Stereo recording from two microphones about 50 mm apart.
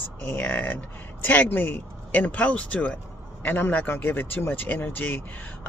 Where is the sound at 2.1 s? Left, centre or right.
Left.